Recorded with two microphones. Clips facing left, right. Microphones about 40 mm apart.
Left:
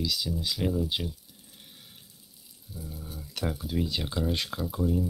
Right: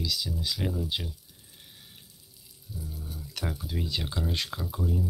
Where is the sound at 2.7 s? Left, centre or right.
Centre.